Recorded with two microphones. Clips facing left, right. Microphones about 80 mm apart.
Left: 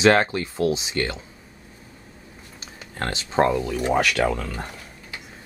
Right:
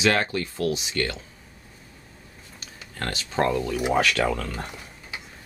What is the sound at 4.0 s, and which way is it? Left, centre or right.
Speech, centre.